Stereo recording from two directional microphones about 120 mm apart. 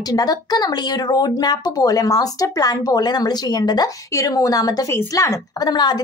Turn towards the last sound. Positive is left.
turn(degrees=35)  # may be behind; listen again after turning